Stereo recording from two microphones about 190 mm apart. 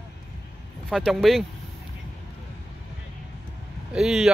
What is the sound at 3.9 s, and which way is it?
Speech, centre (ahead or behind).